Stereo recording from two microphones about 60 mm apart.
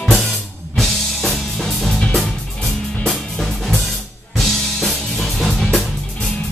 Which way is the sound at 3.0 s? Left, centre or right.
Centre.